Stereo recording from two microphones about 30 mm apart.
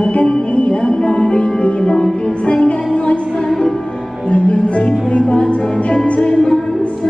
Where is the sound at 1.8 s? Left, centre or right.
Left.